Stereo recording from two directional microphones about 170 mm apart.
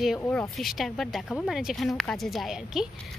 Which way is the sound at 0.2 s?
5° left (ahead or behind).